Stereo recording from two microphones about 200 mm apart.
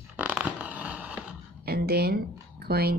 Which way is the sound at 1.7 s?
50° right (ahead or behind).